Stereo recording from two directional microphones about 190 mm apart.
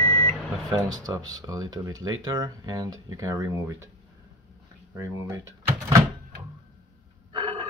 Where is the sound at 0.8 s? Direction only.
20° right (ahead or behind).